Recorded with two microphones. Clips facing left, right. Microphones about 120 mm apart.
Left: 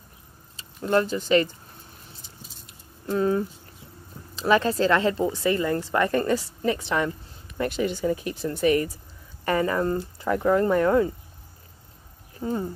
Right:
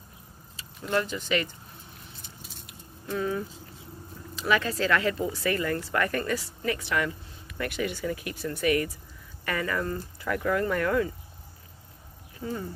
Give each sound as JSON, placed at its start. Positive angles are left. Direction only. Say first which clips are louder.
{"t": 0.6, "sound": "speech", "louder": "left 6 dB", "side_deg": 35}
{"t": 2.6, "sound": "squish", "louder": "left 7 dB", "side_deg": 35}
{"t": 4.4, "sound": "speech", "louder": "left 6 dB", "side_deg": 30}
{"t": 12.4, "sound": "speech", "louder": "left 6 dB", "side_deg": 35}